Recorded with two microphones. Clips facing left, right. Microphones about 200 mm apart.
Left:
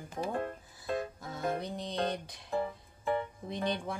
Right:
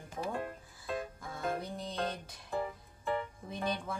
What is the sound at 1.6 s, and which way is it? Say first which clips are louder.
Music: left 3 dB; 5° right (ahead or behind).